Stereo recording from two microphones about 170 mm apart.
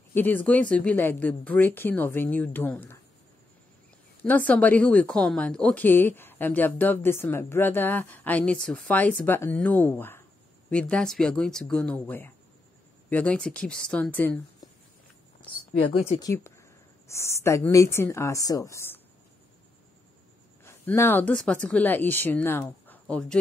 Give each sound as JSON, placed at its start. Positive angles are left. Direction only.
{"t": 0.1, "sound": "a woman's voice", "side_deg": 10}
{"t": 4.2, "sound": "a woman's voice", "side_deg": 10}
{"t": 16.1, "sound": "a woman's voice", "side_deg": 20}
{"t": 20.6, "sound": "speech", "side_deg": 15}